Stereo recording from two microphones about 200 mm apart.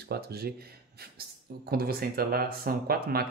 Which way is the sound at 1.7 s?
50° right (ahead or behind).